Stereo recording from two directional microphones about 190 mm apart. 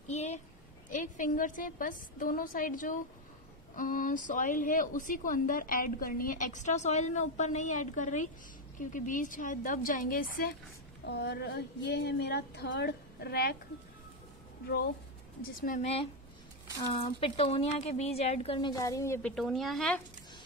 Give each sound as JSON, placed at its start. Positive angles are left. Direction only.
{"t": 0.1, "sound": "a sound", "side_deg": 35}
{"t": 0.8, "sound": "a woman's voice", "side_deg": 40}
{"t": 11.1, "sound": "speech", "side_deg": 60}
{"t": 15.8, "sound": "a woman's voice", "side_deg": 30}
{"t": 18.7, "sound": "a woman's voice", "side_deg": 20}
{"t": 19.3, "sound": "speech", "side_deg": 0}